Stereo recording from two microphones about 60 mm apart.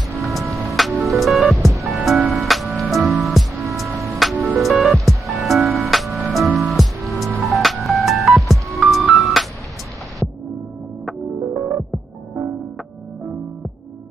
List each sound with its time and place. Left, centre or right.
0.3 s music: centre
11.5 s music: right